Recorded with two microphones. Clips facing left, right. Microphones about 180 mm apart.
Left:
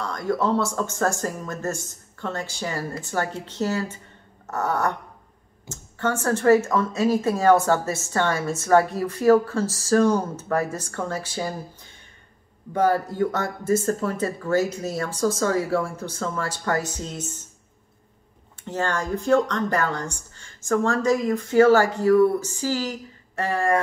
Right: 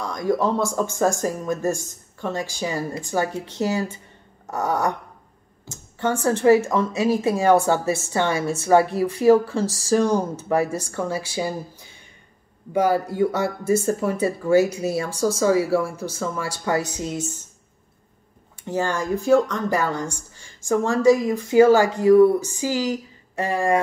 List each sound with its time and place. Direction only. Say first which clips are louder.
0.0 s speech: right 2 dB; 15° right (ahead or behind)
12.7 s speech: right 1 dB; 10° right (ahead or behind)
18.7 s speech: right 2 dB; 10° right (ahead or behind)